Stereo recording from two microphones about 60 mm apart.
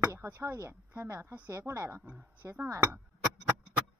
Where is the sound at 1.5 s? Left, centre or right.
Right.